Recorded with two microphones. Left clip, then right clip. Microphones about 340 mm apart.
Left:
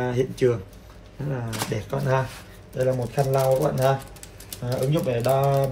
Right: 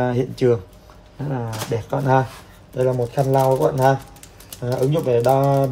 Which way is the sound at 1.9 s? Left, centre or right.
Right.